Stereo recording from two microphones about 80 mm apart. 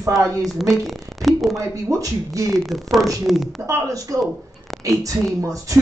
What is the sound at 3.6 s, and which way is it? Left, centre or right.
Speech, right.